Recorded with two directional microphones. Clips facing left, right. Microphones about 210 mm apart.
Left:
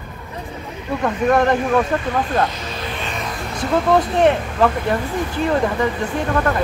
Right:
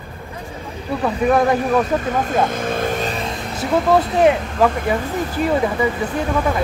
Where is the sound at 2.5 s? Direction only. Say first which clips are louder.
Right 8 dB; 50° right (ahead or behind); by 3.3 s 35° right (ahead or behind).